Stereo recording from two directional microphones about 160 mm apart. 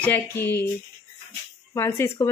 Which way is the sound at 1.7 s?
15° left (ahead or behind).